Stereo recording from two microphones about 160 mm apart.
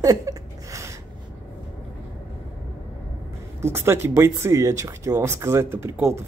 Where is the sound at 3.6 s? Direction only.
15° right (ahead or behind).